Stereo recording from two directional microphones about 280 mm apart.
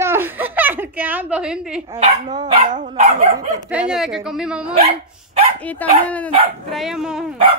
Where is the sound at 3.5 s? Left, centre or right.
Centre.